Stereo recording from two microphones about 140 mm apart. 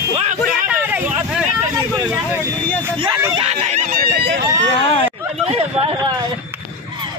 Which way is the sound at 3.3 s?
45° right (ahead or behind).